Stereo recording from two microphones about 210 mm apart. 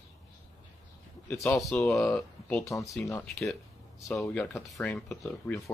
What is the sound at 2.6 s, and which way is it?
Speech, 15° left (ahead or behind).